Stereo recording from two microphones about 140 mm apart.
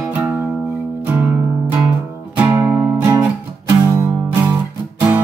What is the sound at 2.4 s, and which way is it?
Music, 15° right (ahead or behind).